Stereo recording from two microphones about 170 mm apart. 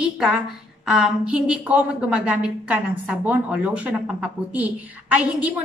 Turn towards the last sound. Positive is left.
turn(degrees=-10)  # may be behind; listen again after turning